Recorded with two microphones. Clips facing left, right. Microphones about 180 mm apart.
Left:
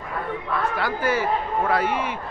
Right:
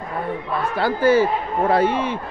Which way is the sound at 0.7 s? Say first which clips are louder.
Right 11 dB; 30° right (ahead or behind).